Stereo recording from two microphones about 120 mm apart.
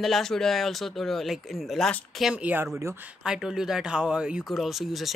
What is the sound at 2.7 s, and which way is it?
Speech, 25° right (ahead or behind).